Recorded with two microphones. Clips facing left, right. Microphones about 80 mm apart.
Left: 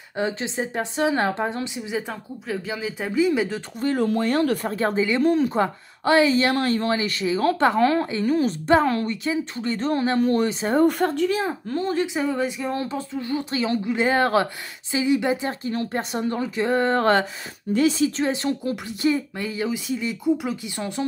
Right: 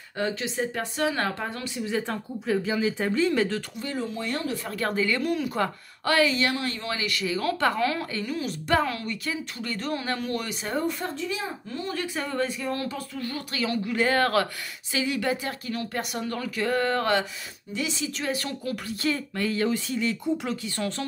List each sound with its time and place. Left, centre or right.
0.2 s speech: left
2.0 s speech: centre
3.8 s speech: left
4.6 s speech: left
6.5 s a woman's voice: left
10.8 s speech: left
11.9 s speech: left
12.2 s speech: centre